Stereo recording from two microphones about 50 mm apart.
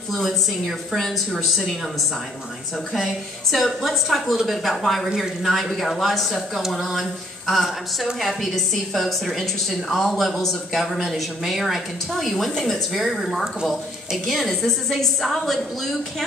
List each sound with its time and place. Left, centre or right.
0.1 s speech: centre
3.5 s speech: centre